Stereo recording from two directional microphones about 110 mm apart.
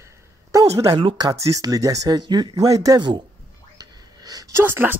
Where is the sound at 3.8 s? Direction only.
35° right (ahead or behind).